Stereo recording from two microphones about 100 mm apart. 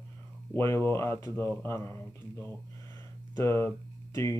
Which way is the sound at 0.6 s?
25° left (ahead or behind).